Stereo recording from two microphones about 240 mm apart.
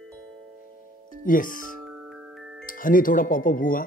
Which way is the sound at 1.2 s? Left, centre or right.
Left.